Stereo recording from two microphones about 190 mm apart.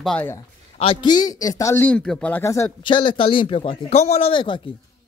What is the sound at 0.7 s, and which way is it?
A man's voice, 25° left (ahead or behind).